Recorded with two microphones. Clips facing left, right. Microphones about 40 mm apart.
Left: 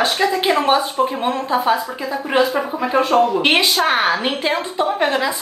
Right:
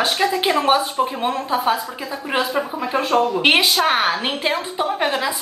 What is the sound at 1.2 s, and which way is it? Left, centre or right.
A woman's voice, centre.